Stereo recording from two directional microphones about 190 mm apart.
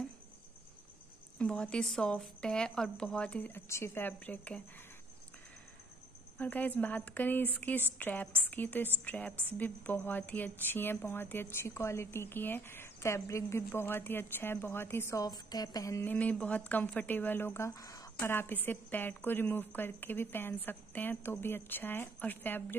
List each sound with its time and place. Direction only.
1.4 s speech: 5° left (ahead or behind)
6.3 s a woman's voice: 10° left (ahead or behind)